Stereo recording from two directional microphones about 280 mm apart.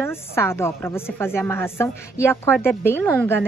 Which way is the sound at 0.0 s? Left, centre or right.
Centre.